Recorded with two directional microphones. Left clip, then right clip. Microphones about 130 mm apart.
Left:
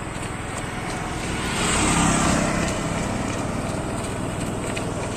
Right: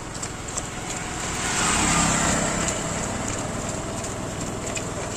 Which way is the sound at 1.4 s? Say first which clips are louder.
Even; 55° right (ahead or behind).